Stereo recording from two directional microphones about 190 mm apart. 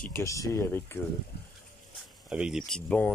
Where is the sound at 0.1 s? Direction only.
15° left (ahead or behind).